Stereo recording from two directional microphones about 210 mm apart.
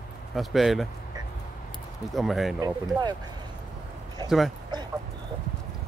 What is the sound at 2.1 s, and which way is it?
Speech, centre (ahead or behind).